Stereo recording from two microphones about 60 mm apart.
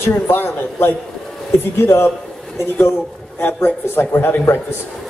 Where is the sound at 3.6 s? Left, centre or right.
Left.